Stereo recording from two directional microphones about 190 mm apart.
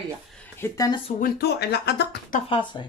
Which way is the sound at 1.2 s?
60° left (ahead or behind).